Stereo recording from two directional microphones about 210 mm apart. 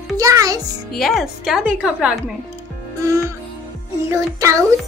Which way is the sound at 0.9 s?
Centre (ahead or behind).